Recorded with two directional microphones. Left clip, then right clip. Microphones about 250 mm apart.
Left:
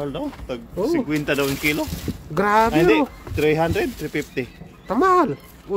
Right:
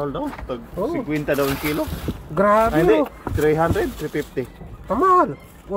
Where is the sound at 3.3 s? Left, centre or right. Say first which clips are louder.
Right 1 dB; centre.